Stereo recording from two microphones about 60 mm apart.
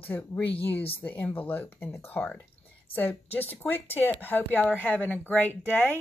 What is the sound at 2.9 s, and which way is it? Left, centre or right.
Speech, left.